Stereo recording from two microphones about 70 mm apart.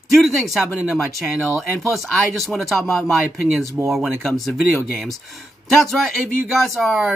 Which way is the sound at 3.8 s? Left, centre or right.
Centre.